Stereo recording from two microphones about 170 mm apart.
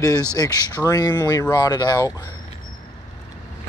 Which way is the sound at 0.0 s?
20° left (ahead or behind).